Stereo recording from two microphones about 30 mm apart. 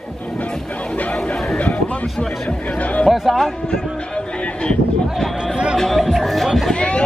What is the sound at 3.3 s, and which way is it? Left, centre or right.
Speech, centre.